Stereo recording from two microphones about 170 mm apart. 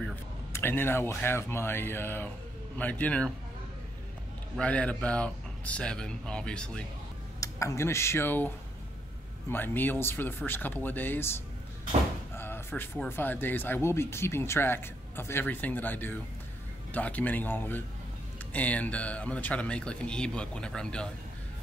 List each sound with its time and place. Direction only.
0.1 s speech: 15° left (ahead or behind)
4.6 s speech: 5° left (ahead or behind)
7.3 s speech: 20° left (ahead or behind)